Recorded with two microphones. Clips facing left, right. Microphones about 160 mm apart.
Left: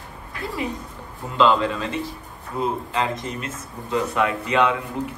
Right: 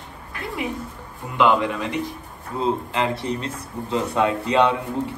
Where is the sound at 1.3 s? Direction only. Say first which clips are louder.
Even; 15° right (ahead or behind).